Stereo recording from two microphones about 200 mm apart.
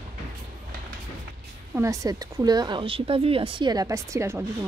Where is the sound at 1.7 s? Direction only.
15° right (ahead or behind).